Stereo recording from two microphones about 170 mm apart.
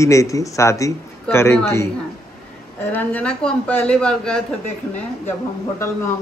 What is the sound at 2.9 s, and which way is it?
Speech, 5° left (ahead or behind).